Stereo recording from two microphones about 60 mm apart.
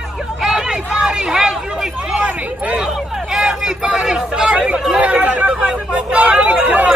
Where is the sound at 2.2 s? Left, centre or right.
Centre.